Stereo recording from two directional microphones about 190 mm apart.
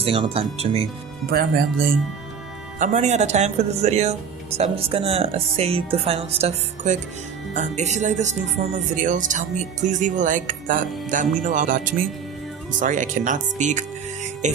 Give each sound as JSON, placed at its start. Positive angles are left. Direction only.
{"t": 0.0, "sound": "speech", "side_deg": -30}
{"t": 1.3, "sound": "speech", "side_deg": -55}
{"t": 2.8, "sound": "speech", "side_deg": -35}